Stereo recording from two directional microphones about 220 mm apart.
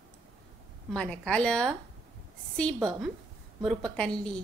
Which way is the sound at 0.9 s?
5° left (ahead or behind).